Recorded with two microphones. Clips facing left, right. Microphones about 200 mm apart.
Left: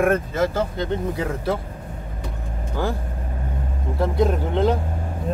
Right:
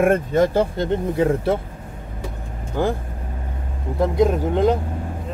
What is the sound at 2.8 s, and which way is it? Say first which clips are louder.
Speech: right 4 dB; 20° right (ahead or behind).